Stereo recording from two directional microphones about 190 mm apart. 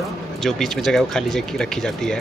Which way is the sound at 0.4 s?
Centre (ahead or behind).